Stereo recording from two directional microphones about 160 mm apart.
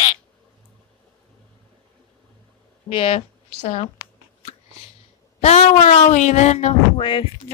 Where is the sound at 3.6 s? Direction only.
45° left (ahead or behind).